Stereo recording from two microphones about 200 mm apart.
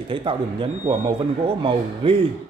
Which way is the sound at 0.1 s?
25° right (ahead or behind).